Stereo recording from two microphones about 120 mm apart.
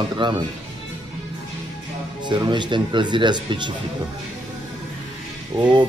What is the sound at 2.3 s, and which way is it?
A man's voice, 40° right (ahead or behind).